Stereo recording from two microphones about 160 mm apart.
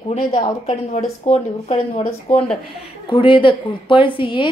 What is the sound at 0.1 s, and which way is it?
A woman's voice, 45° left (ahead or behind).